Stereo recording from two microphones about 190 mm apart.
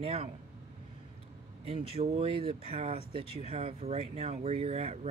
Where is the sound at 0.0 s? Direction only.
35° right (ahead or behind).